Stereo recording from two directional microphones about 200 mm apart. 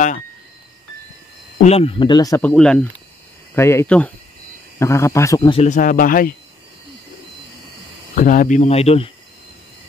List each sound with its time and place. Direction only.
1.6 s speech: 30° left (ahead or behind)
2.5 s speech: 5° left (ahead or behind)
5.6 s speech: 40° left (ahead or behind)
8.1 s speech: 40° left (ahead or behind)